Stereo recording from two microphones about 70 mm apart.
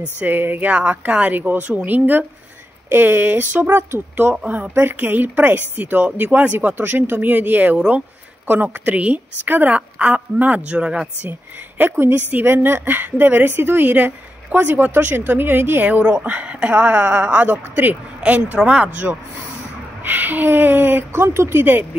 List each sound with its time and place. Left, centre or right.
0.2 s a woman's voice: right
11.8 s a woman's voice: right